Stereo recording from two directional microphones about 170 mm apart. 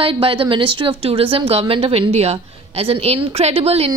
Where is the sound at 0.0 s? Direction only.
30° right (ahead or behind).